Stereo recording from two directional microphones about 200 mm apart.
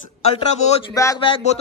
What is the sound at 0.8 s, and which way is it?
Speech, 20° left (ahead or behind).